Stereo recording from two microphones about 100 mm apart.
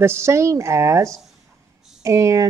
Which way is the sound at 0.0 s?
25° right (ahead or behind).